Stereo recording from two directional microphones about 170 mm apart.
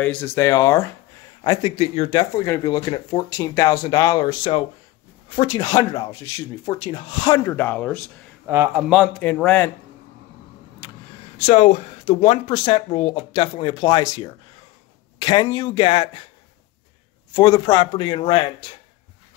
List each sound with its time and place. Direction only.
0.0 s speech: 10° left (ahead or behind)
8.5 s a man's voice: 15° right (ahead or behind)
8.8 s a man's voice: 5° right (ahead or behind)
9.2 s speech: 10° left (ahead or behind)
11.4 s speech: 40° left (ahead or behind)
17.3 s speech: 25° left (ahead or behind)